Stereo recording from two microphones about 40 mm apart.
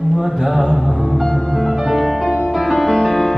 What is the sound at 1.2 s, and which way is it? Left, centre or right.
Music, centre.